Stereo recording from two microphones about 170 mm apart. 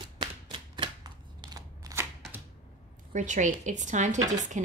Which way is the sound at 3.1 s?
45° right (ahead or behind).